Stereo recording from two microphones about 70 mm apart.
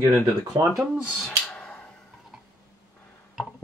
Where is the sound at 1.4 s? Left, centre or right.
Centre.